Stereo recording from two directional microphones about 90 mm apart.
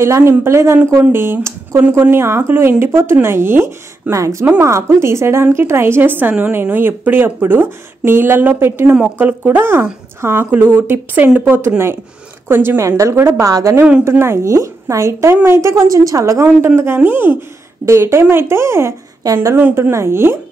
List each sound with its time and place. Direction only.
0.0 s a woman's voice: 30° right (ahead or behind)
8.9 s a woman's voice: 15° right (ahead or behind)